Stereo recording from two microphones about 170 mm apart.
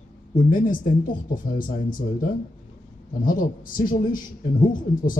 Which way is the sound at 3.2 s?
55° left (ahead or behind).